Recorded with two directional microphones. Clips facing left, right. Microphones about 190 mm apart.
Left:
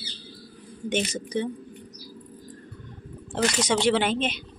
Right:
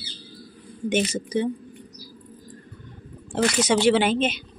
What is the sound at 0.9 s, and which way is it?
Speech, 10° right (ahead or behind).